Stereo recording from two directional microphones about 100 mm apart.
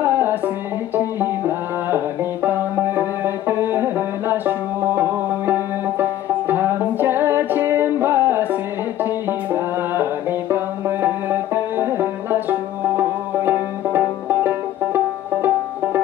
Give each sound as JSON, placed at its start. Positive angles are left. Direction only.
{"t": 0.0, "sound": "music", "side_deg": -20}